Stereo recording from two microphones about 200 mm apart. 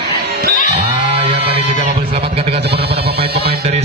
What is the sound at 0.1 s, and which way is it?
Music, 55° right (ahead or behind).